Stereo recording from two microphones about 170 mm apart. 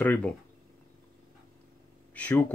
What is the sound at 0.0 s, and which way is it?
Speech, 10° left (ahead or behind).